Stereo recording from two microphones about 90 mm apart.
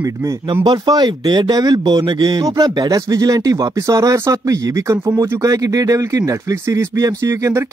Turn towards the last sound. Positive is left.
turn(degrees=-35)  # may be behind; listen again after turning